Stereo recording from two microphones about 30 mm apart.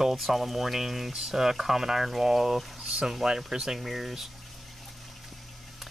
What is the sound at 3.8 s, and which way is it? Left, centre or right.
Speech, centre.